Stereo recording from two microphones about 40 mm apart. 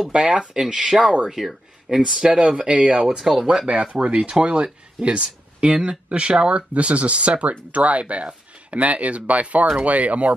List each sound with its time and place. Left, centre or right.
0.1 s speech: right
3.2 s speech: centre
3.6 s speech: right